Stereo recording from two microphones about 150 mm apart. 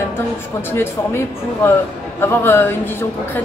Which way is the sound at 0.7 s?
15° left (ahead or behind).